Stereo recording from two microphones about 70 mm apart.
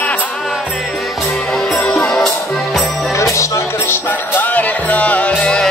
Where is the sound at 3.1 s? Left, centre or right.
Left.